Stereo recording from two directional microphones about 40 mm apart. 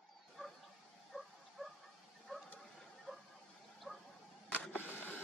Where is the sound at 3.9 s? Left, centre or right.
Centre.